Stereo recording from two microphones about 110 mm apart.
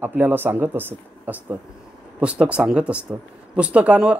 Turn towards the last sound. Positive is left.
turn(degrees=-10)  # may be behind; listen again after turning